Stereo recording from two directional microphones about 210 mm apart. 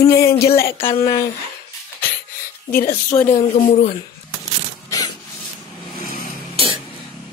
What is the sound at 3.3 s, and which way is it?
Speech, 30° left (ahead or behind).